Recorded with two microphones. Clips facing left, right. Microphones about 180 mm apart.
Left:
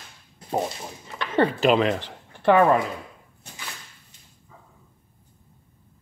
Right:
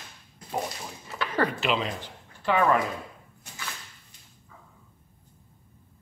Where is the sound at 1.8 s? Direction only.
75° left (ahead or behind).